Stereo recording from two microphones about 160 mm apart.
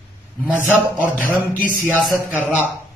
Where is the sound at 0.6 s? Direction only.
10° right (ahead or behind).